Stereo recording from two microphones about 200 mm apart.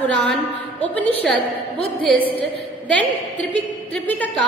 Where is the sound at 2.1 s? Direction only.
25° left (ahead or behind).